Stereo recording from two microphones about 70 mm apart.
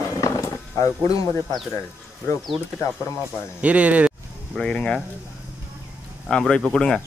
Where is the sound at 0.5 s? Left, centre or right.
Left.